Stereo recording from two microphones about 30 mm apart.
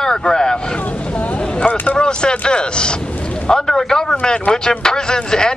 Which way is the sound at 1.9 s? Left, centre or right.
Left.